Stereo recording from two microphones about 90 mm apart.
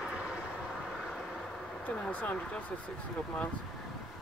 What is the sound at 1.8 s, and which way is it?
Speech, 15° left (ahead or behind).